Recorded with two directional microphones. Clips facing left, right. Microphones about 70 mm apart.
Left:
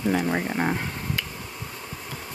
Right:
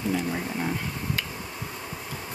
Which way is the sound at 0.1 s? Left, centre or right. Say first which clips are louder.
Left 5 dB; left.